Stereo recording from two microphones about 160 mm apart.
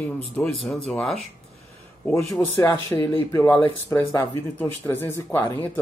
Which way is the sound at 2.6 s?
30° left (ahead or behind).